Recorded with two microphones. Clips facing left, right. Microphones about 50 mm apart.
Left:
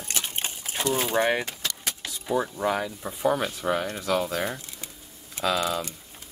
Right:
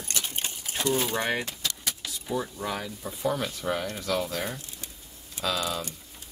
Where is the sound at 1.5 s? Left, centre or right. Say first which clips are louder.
Left 1 dB; left.